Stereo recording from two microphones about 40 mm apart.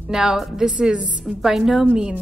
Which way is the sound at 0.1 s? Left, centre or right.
Centre.